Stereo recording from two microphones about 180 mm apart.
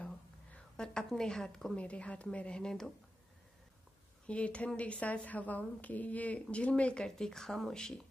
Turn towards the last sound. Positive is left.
turn(degrees=5)  # may be behind; listen again after turning